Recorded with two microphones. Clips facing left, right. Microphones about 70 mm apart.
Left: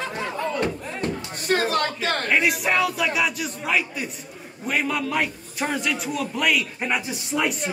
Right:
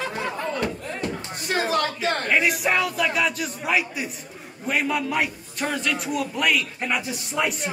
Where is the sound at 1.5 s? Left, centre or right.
Left.